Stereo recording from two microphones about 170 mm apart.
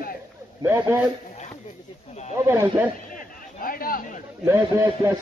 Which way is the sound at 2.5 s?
15° right (ahead or behind).